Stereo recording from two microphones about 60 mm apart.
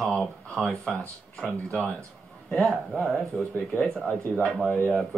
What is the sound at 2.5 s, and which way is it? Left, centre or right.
Speech, centre.